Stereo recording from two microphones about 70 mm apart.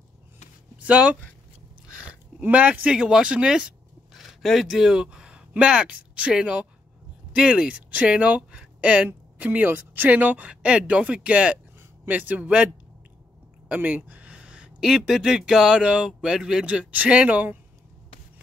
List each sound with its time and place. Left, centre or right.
0.7 s speech: centre
2.5 s speech: centre
13.7 s speech: right; by 16.6 s centre
16.6 s speech: centre